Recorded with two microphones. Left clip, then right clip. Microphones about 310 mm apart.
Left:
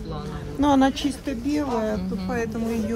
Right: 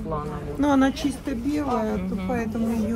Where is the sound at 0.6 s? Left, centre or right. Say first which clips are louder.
Left 2 dB; left.